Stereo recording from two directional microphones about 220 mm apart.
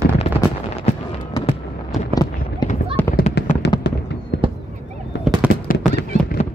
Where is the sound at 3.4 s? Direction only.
50° left (ahead or behind).